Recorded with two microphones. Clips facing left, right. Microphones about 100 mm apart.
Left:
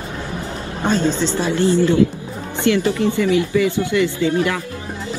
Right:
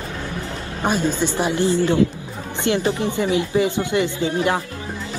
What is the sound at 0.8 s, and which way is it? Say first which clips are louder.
A woman's voice: left 2 dB; 10° right (ahead or behind).